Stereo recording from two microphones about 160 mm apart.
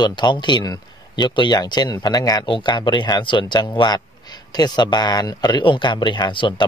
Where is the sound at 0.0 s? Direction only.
30° left (ahead or behind).